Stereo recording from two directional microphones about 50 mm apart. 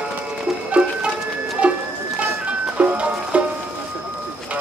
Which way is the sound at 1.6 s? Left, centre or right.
Right.